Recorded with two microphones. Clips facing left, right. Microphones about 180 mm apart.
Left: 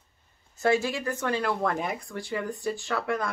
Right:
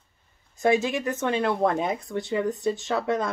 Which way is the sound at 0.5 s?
20° right (ahead or behind).